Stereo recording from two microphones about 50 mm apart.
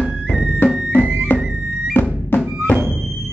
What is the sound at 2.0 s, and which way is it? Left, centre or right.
Music, left.